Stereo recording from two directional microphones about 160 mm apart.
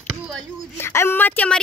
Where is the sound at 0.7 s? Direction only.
15° left (ahead or behind).